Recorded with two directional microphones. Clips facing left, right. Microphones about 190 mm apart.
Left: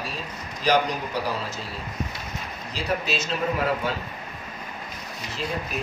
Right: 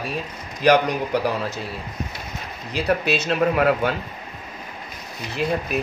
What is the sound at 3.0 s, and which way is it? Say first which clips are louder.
Speech: right 6 dB; 60° right (ahead or behind).